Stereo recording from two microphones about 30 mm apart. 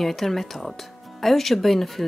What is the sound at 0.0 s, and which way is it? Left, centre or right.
Speech, centre.